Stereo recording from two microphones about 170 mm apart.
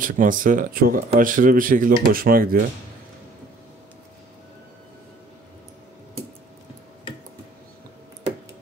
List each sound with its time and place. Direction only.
0.0 s speech: 50° right (ahead or behind)